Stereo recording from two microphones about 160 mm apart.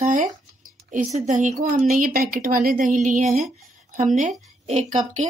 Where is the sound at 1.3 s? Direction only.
50° right (ahead or behind).